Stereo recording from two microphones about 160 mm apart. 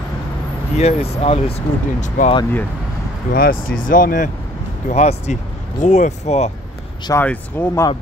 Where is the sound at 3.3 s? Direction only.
65° left (ahead or behind).